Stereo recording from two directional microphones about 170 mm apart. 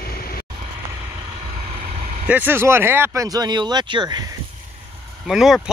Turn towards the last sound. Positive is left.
turn(degrees=0)  # may be behind; listen again after turning